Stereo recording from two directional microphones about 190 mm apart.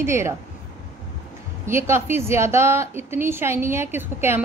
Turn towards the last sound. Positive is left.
turn(degrees=-10)  # may be behind; listen again after turning